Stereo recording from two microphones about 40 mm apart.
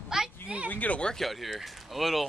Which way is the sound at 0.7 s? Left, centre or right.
Left.